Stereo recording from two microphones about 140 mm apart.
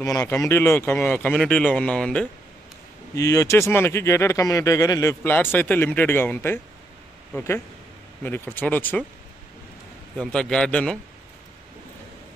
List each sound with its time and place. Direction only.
0.0 s speech: 25° left (ahead or behind); by 2.2 s 5° left (ahead or behind)
3.2 s speech: 20° left (ahead or behind)
10.1 s a man's voice: 5° left (ahead or behind)